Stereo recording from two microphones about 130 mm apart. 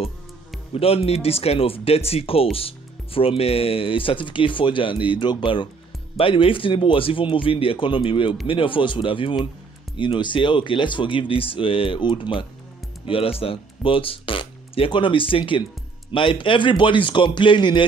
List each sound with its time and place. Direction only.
0.7 s speech: 50° left (ahead or behind)